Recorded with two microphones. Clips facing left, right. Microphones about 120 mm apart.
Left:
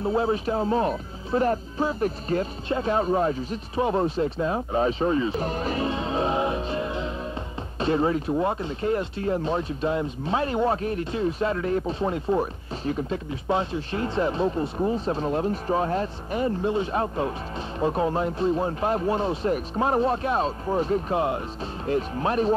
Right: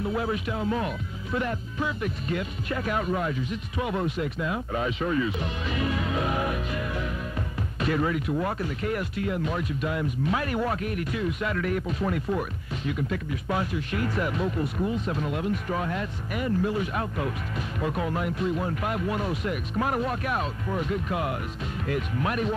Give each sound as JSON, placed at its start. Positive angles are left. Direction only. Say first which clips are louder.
{"t": 0.0, "sound": "speech", "louder": "left 4 dB", "side_deg": 30}